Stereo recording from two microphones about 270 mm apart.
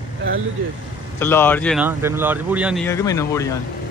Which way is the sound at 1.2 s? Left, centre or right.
Centre.